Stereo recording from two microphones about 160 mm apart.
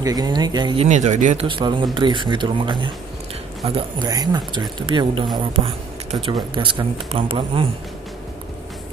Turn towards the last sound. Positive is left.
turn(degrees=-35)  # may be behind; listen again after turning